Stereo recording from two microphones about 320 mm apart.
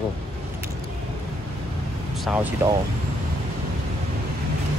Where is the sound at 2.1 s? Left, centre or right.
Centre.